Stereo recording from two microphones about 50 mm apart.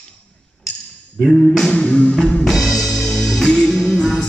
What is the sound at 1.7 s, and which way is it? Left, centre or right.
Music, left.